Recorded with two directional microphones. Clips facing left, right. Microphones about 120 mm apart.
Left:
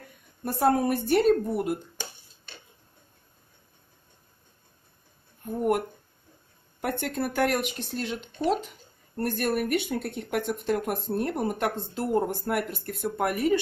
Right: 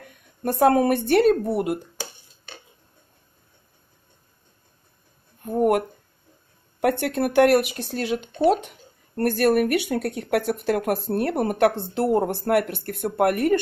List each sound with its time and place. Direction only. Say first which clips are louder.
0.4 s speech: right 5 dB; 90° right
5.4 s a sound: right 6 dB; 85° right
6.8 s speech: right 7 dB; 75° right (ahead or behind)